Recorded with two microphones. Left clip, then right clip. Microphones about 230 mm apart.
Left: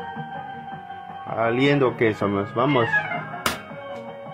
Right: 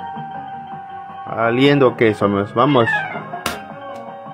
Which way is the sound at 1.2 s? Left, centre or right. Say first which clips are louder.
Right 5 dB; centre.